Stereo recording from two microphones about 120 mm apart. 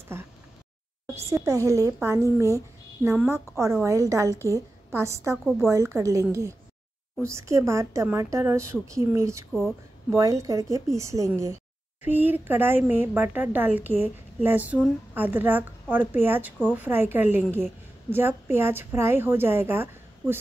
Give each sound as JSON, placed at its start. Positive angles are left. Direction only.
{"t": 1.1, "sound": "a woman's voice", "side_deg": -25}
{"t": 9.5, "sound": "speech", "side_deg": 0}
{"t": 10.1, "sound": "a woman's voice", "side_deg": -25}